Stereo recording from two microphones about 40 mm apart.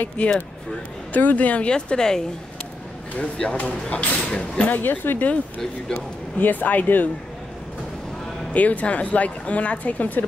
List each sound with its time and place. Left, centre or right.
0.2 s speech: left
1.1 s a woman's voice: left
1.7 s a woman's voice: centre
3.2 s a woman's voice: left
4.3 s speech: left
4.6 s speech: left
5.6 s speech: centre
6.3 s speech: left
8.5 s a woman's voice: left